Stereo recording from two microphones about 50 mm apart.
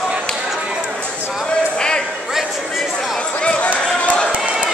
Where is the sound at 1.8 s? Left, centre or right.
Centre.